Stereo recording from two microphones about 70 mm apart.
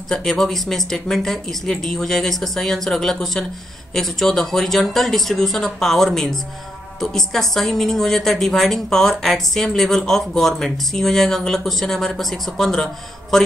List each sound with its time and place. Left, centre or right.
0.1 s a woman's voice: centre